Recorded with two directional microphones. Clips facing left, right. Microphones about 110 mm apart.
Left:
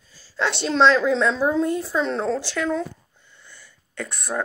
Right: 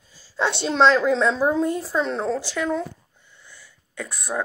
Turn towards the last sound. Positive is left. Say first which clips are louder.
# even
turn(degrees=-5)  # may be behind; listen again after turning